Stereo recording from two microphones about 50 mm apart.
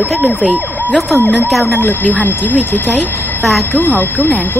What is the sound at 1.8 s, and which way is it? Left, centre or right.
Speech, left.